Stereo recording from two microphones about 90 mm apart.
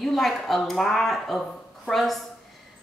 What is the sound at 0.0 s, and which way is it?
A woman's voice, centre (ahead or behind).